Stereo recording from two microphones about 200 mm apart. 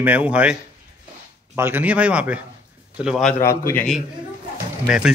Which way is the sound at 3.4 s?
15° left (ahead or behind).